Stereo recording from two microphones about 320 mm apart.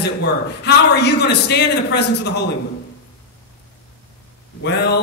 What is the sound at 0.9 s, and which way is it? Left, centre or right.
A man's voice, left.